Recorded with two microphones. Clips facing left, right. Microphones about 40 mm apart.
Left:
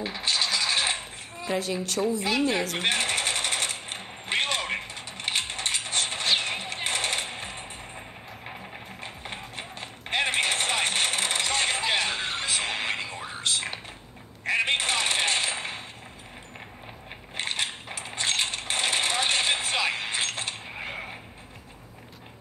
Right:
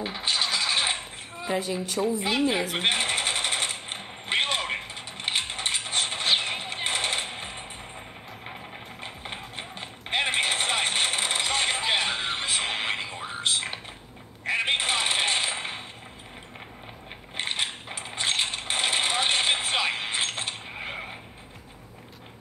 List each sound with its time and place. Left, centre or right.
0.0 s scratch: right
1.7 s sewing machine: right
4.9 s mechanisms: right
7.3 s music: right
9.0 s music: right
14.4 s a sound: right
17.4 s coin: right
20.8 s vehicle: centre